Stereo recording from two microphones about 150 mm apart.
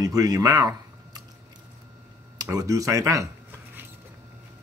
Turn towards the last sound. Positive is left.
turn(degrees=-20)  # may be behind; listen again after turning